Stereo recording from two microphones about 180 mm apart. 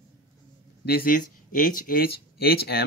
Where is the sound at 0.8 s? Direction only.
55° left (ahead or behind).